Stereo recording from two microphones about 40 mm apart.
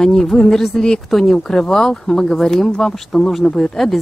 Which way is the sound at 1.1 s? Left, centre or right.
Centre.